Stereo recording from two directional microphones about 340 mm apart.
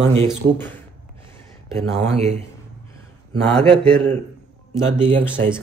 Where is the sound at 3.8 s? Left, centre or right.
Centre.